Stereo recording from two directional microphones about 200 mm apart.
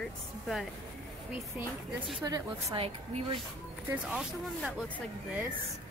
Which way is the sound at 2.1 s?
20° right (ahead or behind).